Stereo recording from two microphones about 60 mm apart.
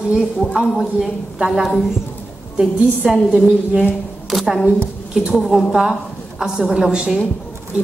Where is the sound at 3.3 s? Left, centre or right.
Centre.